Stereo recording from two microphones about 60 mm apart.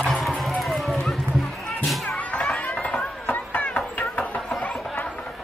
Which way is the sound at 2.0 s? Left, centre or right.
Left.